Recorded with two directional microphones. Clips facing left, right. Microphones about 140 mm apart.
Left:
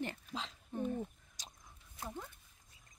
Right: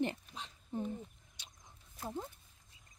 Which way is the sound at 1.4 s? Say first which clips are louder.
Left 5 dB; 40° left (ahead or behind).